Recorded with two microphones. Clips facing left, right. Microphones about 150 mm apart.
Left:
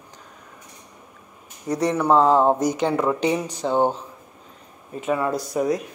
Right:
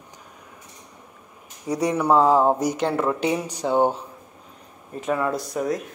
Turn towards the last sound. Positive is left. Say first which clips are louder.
# left 3 dB
turn(degrees=0)  # may be behind; listen again after turning